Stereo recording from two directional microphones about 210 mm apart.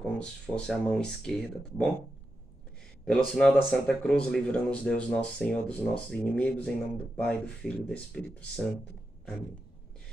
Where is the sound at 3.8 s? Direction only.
5° left (ahead or behind).